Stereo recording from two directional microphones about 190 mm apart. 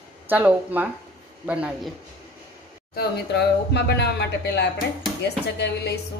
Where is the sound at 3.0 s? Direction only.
60° left (ahead or behind).